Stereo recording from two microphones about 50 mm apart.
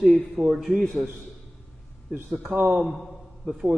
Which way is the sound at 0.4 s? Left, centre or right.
Centre.